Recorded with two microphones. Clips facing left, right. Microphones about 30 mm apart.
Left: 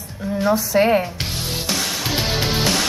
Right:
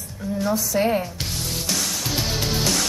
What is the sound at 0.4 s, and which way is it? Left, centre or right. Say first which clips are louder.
Speech: left 5 dB; left.